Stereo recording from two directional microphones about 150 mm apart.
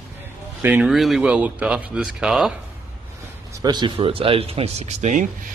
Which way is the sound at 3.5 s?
30° right (ahead or behind).